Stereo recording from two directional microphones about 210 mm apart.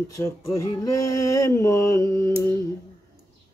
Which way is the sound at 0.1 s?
15° left (ahead or behind).